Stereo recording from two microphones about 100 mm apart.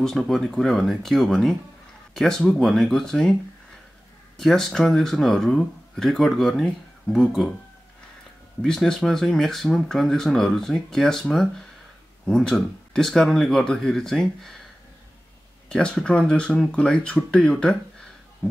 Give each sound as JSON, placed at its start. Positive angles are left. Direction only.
{"t": 0.0, "sound": "speech", "side_deg": 0}
{"t": 4.4, "sound": "speech", "side_deg": 5}
{"t": 8.6, "sound": "speech", "side_deg": 5}
{"t": 15.7, "sound": "speech", "side_deg": 10}